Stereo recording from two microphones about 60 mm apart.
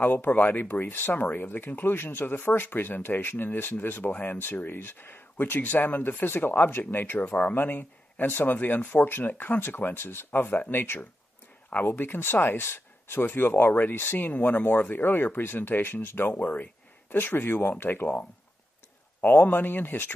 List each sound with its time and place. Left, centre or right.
0.0 s speech: left
19.2 s speech: left